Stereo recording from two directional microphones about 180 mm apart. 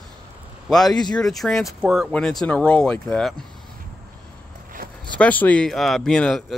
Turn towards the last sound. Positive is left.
turn(degrees=5)  # may be behind; listen again after turning